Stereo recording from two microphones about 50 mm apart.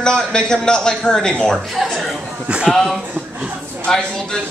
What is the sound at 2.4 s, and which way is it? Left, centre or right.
Speech, right.